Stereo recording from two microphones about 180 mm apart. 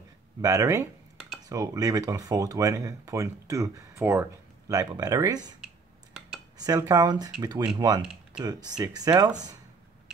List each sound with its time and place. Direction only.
0.4 s speech: 15° right (ahead or behind)
6.6 s speech: 20° right (ahead or behind)
8.0 s speech: 5° right (ahead or behind)
8.5 s speech: 20° right (ahead or behind)